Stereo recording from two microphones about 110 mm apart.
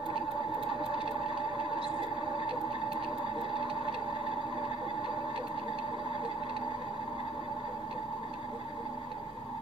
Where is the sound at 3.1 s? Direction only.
45° left (ahead or behind).